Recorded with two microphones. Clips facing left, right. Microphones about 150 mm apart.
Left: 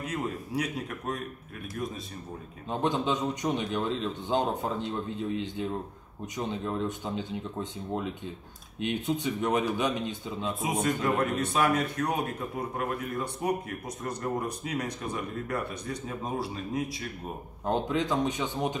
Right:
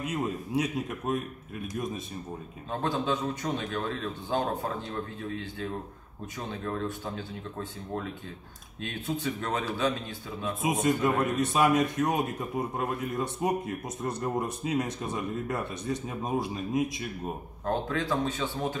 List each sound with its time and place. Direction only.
0.0 s speech: 20° right (ahead or behind)
2.7 s a man's voice: 20° left (ahead or behind)
10.6 s speech: 20° right (ahead or behind)
17.6 s a man's voice: 20° left (ahead or behind)